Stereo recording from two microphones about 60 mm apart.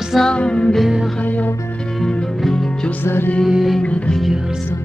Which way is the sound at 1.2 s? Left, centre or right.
Left.